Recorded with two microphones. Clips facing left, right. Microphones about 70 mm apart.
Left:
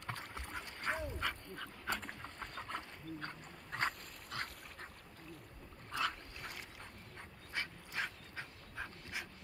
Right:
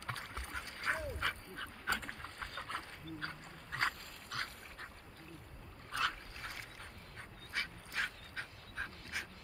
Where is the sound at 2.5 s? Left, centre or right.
Right.